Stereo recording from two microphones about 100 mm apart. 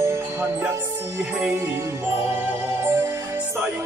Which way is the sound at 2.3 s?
25° right (ahead or behind).